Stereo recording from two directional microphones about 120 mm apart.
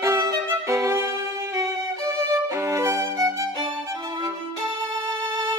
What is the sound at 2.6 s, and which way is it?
Music, 25° right (ahead or behind).